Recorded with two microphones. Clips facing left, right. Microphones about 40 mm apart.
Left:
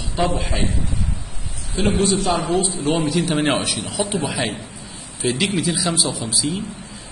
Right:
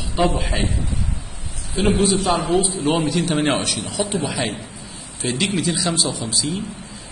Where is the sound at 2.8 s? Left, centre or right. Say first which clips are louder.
Right 1 dB; centre.